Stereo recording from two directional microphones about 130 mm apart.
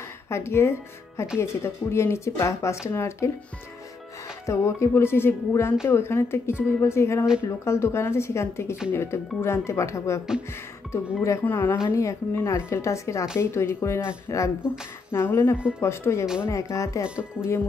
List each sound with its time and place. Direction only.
0.3 s speech: 20° left (ahead or behind)
4.5 s speech: 20° left (ahead or behind)
11.4 s a woman's voice: 15° left (ahead or behind)
17.0 s speech: 10° right (ahead or behind)